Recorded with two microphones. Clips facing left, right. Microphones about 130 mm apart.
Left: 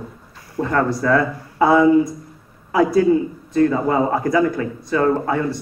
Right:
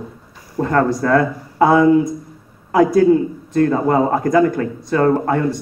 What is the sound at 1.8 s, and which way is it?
Speech, 5° left (ahead or behind).